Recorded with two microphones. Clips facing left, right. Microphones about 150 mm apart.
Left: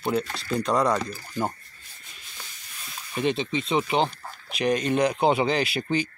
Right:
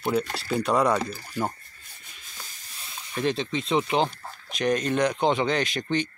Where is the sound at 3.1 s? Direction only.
Centre (ahead or behind).